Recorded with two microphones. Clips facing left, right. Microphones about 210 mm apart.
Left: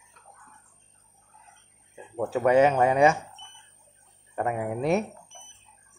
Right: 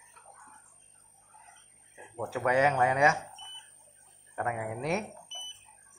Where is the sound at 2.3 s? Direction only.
30° left (ahead or behind).